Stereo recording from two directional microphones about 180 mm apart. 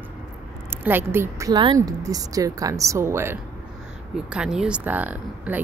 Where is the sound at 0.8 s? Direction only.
10° right (ahead or behind).